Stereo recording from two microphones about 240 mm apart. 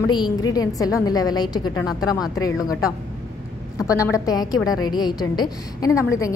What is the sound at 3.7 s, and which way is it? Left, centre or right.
A woman's voice, centre.